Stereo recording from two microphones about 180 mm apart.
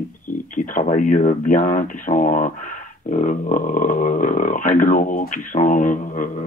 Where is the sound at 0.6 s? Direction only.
50° left (ahead or behind).